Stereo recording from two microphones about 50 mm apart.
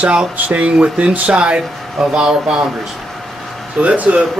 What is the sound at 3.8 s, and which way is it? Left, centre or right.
Speech, right.